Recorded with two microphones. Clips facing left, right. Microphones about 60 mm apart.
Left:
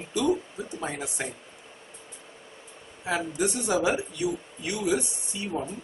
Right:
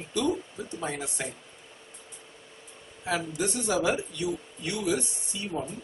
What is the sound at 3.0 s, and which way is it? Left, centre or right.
A man's voice, centre.